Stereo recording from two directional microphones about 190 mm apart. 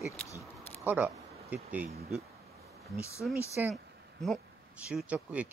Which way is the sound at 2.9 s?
15° left (ahead or behind).